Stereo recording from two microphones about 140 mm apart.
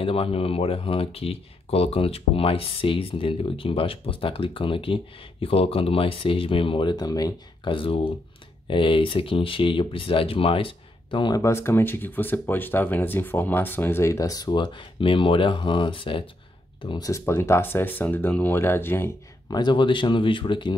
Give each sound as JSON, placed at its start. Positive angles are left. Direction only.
{"t": 0.0, "sound": "speech", "side_deg": 45}
{"t": 7.7, "sound": "speech", "side_deg": 40}
{"t": 11.4, "sound": "speech", "side_deg": 20}
{"t": 19.5, "sound": "speech", "side_deg": 35}